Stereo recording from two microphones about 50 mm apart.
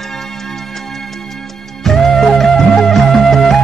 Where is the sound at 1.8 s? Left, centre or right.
Centre.